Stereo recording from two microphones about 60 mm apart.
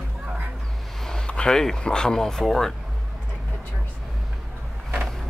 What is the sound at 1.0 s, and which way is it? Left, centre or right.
Speech, centre.